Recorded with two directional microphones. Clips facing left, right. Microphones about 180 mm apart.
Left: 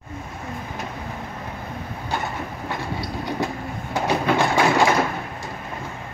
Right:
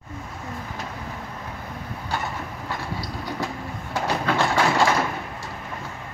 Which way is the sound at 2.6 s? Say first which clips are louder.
Left 3 dB; 20° left (ahead or behind).